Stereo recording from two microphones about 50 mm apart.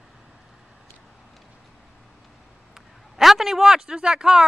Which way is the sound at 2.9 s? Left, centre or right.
Centre.